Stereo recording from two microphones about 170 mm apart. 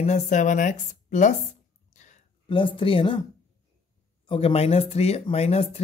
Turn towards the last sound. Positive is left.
turn(degrees=40)  # may be behind; listen again after turning